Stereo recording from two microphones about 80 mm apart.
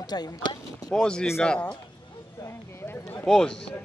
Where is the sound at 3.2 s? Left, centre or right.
Centre.